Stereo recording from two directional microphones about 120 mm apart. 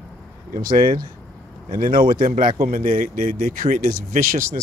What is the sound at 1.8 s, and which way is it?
Speech, 40° right (ahead or behind).